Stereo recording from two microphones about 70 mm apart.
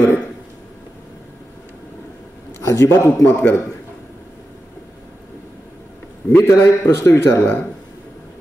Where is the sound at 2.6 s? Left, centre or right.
Left.